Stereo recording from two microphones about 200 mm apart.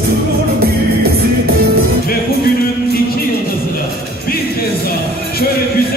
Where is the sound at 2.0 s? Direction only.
50° left (ahead or behind).